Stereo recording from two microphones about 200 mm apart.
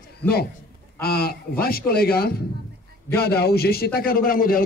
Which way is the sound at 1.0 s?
50° left (ahead or behind).